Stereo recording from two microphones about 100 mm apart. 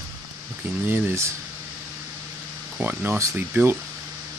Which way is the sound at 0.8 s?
20° right (ahead or behind).